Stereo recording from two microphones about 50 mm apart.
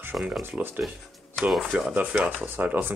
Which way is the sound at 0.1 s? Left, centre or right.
Centre.